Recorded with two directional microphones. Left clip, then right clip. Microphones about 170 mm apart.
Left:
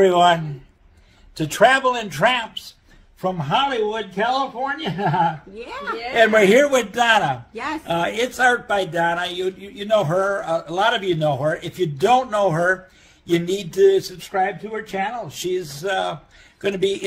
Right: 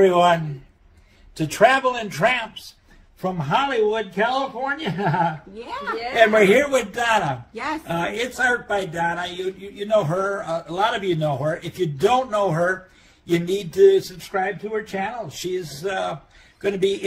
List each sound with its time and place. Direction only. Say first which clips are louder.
0.0 s a man's voice: left 1 dB; 15° left (ahead or behind)
1.4 s a man's voice: left 1 dB; 20° left (ahead or behind)
5.6 s a woman's voice: right 4 dB; 10° right (ahead or behind)
6.1 s speech: left 1 dB; 25° left (ahead or behind)
6.7 s a man's voice: left 3 dB; 35° left (ahead or behind)
7.5 s a woman's voice: even; 10° right (ahead or behind)
7.9 s a man's voice: left 6 dB; 35° left (ahead or behind)